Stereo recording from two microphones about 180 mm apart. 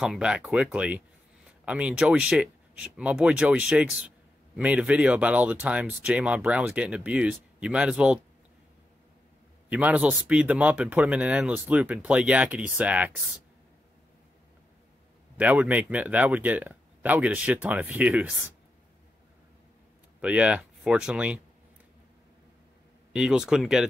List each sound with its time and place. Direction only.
0.0 s speech: 5° right (ahead or behind)
9.7 s speech: 10° right (ahead or behind)
15.3 s speech: 10° right (ahead or behind)
20.2 s speech: 5° right (ahead or behind)
23.1 s speech: 5° right (ahead or behind)